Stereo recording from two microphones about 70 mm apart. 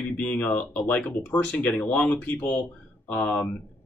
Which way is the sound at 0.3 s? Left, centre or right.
Left.